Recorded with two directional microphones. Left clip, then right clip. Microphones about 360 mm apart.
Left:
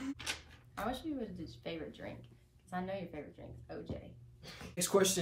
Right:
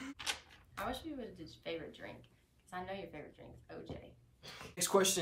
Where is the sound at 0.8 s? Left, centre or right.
Centre.